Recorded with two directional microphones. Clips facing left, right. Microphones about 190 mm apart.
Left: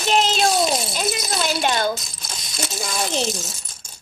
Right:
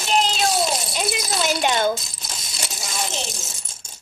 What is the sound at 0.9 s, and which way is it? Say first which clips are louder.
Speech: even; 15° right (ahead or behind).